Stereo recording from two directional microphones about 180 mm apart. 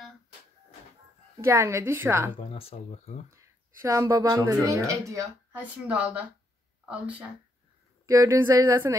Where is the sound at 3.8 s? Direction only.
20° right (ahead or behind).